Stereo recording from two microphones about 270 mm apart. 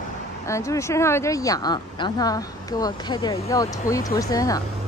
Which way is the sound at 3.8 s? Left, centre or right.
Left.